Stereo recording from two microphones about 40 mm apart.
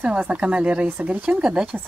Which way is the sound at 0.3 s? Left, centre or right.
Right.